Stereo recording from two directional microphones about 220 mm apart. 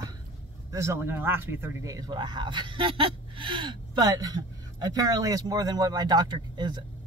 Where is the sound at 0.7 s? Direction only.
10° right (ahead or behind).